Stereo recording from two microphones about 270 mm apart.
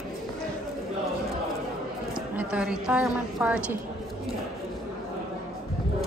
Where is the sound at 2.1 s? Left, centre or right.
Centre.